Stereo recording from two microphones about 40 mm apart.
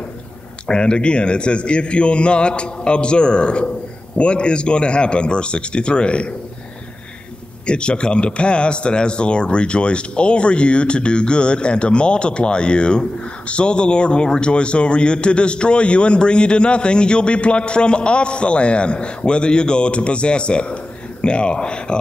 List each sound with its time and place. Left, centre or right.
0.7 s speech: left
7.6 s speech: left